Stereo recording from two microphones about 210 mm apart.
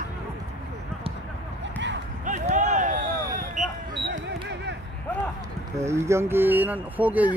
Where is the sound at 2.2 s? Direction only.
35° right (ahead or behind).